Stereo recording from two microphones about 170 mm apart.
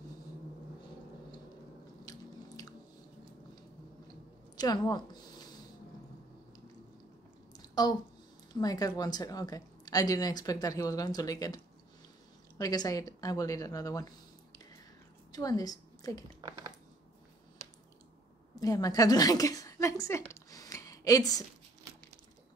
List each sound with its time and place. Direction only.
2.0 s biting: 20° left (ahead or behind)
4.6 s a woman's voice: 25° left (ahead or behind)
7.5 s a sound: 20° left (ahead or behind)
8.5 s a woman's voice: 20° left (ahead or behind)
16.3 s a sound: 20° right (ahead or behind)
18.6 s a woman's voice: 20° left (ahead or behind)